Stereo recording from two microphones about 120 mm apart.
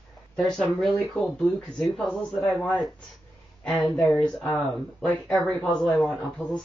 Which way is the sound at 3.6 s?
Centre (ahead or behind).